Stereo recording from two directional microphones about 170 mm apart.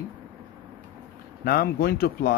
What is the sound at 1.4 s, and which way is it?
Speech, 60° left (ahead or behind).